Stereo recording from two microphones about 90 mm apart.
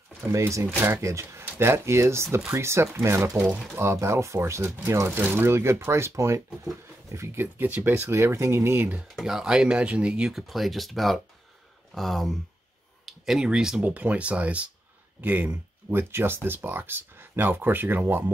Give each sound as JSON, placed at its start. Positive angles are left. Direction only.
{"t": 0.3, "sound": "speech", "side_deg": -35}
{"t": 9.1, "sound": "speech", "side_deg": -5}